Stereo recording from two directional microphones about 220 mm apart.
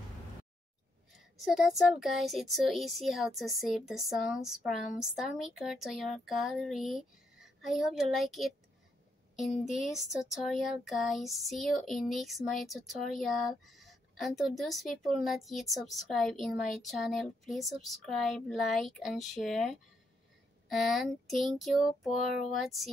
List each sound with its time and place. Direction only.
1.1 s child singing: centre (ahead or behind)
9.7 s child singing: centre (ahead or behind)